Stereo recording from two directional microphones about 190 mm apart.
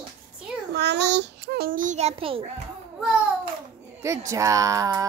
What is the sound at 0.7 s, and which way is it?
A child's voice, 60° right (ahead or behind).